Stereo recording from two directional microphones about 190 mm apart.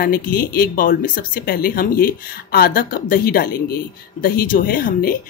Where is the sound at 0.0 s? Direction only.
50° left (ahead or behind).